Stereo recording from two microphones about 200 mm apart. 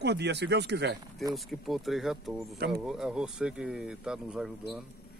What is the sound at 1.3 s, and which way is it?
Speech, centre (ahead or behind).